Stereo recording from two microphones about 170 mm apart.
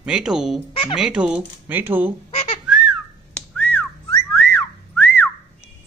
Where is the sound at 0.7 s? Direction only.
30° left (ahead or behind).